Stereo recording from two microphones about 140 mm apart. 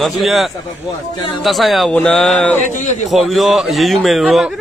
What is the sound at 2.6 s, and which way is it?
Speech, 60° left (ahead or behind).